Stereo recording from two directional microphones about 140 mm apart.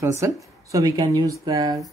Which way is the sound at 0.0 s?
20° right (ahead or behind).